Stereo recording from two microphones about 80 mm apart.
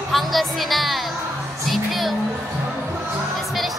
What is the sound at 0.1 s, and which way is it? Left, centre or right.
Speech, centre.